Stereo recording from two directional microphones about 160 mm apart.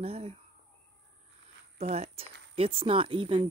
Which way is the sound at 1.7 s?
40° right (ahead or behind).